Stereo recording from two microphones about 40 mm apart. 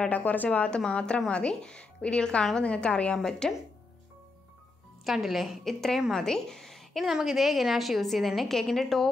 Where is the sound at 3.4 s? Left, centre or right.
Centre.